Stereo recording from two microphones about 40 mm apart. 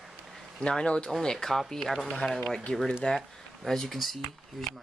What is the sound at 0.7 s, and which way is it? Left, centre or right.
Speech, left.